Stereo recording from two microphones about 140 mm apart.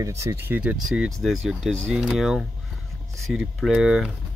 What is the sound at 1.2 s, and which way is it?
Speech, 5° right (ahead or behind).